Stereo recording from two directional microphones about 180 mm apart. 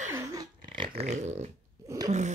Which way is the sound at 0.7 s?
30° right (ahead or behind).